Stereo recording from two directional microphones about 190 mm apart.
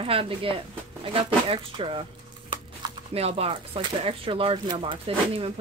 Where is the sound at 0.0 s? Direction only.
30° right (ahead or behind).